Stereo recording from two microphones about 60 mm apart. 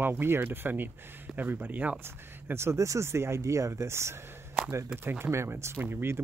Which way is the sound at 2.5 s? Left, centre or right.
Right.